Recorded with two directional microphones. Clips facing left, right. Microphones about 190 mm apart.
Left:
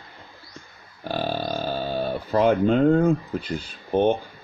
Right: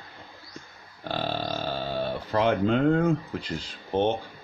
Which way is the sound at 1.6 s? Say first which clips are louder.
Left 3 dB; 30° left (ahead or behind).